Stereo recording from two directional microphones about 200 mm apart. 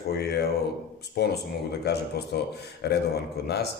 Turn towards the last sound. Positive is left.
turn(degrees=55)  # may be behind; listen again after turning